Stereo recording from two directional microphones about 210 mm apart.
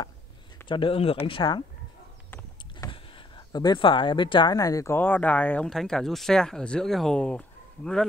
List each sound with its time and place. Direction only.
0.7 s speech: 25° left (ahead or behind)
2.9 s speech: 25° left (ahead or behind); by 8.1 s 5° left (ahead or behind)